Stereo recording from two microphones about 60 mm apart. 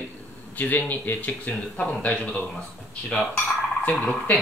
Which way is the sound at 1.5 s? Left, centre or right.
Centre.